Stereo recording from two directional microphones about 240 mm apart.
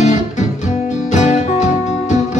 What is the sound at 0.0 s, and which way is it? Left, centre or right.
Music, left.